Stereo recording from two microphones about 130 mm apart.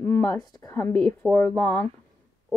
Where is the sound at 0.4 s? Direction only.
25° left (ahead or behind).